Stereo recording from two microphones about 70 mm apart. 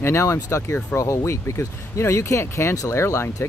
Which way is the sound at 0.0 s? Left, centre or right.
Left.